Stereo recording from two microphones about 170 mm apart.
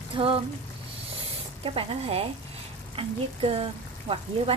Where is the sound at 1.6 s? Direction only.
30° right (ahead or behind).